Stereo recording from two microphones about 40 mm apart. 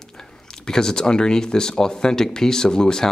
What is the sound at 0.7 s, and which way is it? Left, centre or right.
Speech, centre.